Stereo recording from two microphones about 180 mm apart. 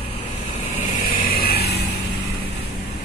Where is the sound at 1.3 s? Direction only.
60° left (ahead or behind).